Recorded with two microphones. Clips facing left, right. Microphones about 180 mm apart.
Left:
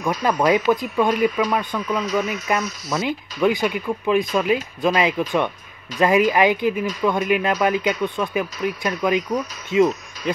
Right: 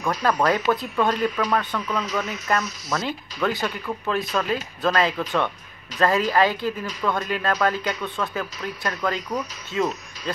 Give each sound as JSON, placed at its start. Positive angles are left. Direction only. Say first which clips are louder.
{"t": 0.0, "sound": "speech", "louder": "left 2 dB", "side_deg": 20}